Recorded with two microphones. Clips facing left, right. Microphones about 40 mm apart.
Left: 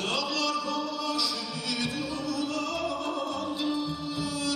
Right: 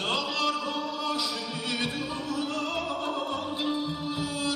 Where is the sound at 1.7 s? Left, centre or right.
Right.